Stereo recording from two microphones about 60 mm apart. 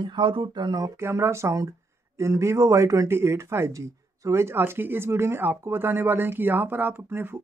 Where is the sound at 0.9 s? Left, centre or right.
Right.